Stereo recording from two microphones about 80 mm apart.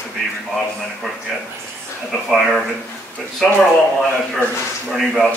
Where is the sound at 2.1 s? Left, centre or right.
Centre.